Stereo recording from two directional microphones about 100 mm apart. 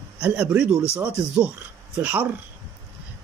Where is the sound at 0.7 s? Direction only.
90° right.